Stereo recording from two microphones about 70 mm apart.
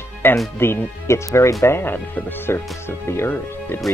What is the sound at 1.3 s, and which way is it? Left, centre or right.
Speech, left.